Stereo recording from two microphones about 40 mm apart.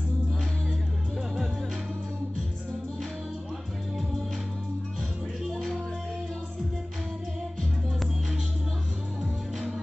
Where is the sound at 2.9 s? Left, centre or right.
Centre.